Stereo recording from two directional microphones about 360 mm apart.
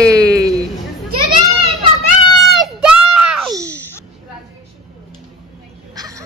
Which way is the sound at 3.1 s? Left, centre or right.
Right.